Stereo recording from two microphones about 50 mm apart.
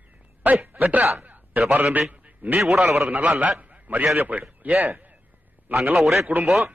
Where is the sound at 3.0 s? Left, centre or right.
Right.